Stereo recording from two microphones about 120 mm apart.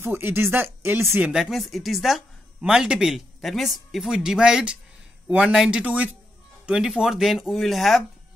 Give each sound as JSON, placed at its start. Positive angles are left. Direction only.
{"t": 0.0, "sound": "speech", "side_deg": -20}
{"t": 1.3, "sound": "speech", "side_deg": 0}